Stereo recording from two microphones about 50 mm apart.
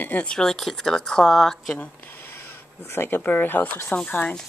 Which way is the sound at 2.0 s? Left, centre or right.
Left.